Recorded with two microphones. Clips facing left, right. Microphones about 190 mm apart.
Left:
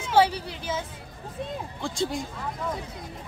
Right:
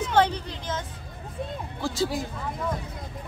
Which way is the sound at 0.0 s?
10° left (ahead or behind).